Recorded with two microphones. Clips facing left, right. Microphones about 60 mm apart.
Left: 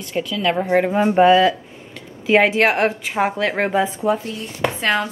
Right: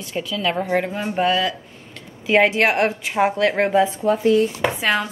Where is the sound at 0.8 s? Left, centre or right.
Centre.